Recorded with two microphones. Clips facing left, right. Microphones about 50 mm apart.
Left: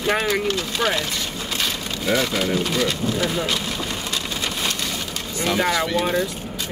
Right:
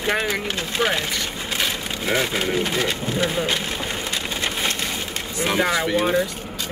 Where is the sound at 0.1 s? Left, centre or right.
Centre.